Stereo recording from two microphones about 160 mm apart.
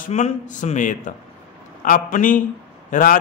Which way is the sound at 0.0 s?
50° left (ahead or behind).